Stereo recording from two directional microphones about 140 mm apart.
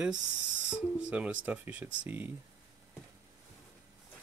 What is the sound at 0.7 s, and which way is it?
Speech, 10° right (ahead or behind).